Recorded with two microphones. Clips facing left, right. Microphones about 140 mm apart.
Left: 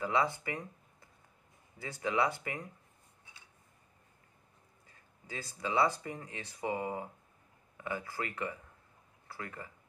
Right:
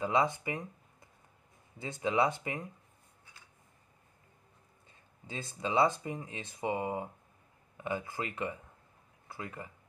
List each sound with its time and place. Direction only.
0.0 s speech: 20° right (ahead or behind)
1.8 s speech: 20° right (ahead or behind)
4.8 s speech: 25° right (ahead or behind)